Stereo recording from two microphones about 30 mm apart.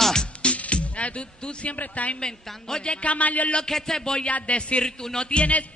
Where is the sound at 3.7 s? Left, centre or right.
Left.